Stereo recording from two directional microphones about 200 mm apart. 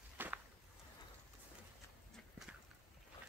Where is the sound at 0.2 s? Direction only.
10° right (ahead or behind).